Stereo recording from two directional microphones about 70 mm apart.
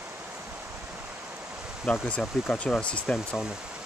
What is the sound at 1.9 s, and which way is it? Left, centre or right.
Speech, left.